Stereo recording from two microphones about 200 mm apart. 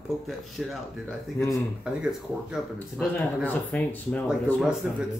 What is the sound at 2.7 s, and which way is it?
Speech, 10° left (ahead or behind).